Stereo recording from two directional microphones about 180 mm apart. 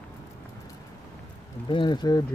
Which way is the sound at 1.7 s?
25° left (ahead or behind).